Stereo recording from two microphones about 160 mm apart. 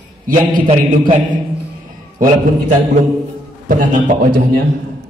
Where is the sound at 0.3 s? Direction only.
60° right (ahead or behind).